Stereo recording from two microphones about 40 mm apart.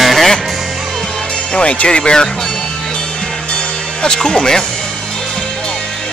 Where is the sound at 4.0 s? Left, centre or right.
Centre.